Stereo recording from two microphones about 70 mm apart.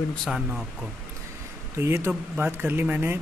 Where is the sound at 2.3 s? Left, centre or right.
Right.